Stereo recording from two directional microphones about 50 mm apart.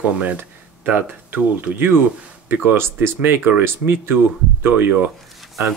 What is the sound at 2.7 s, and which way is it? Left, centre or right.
Speech, right.